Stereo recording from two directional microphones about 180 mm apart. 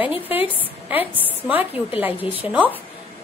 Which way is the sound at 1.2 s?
10° right (ahead or behind).